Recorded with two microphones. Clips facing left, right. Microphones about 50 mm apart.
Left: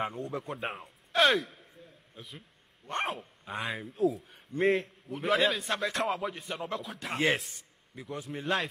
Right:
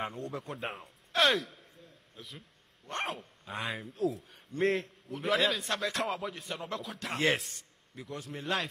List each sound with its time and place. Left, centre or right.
0.0 s a man's voice: centre